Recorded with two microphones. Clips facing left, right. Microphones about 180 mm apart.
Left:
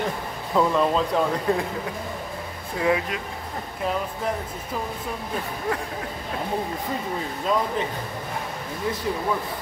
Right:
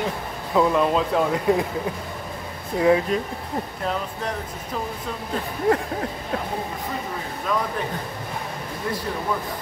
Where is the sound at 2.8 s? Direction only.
35° right (ahead or behind).